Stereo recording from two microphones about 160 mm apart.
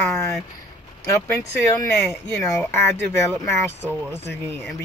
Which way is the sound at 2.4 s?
10° left (ahead or behind).